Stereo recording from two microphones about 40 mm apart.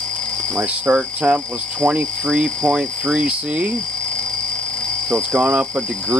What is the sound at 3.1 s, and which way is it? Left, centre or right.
Speech, right.